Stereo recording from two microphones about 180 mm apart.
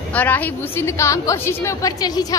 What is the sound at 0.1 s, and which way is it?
A woman's voice, 10° left (ahead or behind).